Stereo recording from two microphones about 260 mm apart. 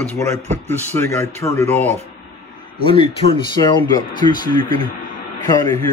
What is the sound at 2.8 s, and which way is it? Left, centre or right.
A man's voice, centre.